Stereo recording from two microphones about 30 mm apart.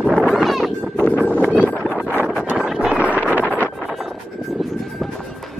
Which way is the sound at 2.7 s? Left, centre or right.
Right.